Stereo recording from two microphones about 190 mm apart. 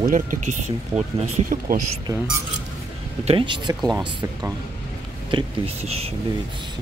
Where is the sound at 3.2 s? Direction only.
25° right (ahead or behind).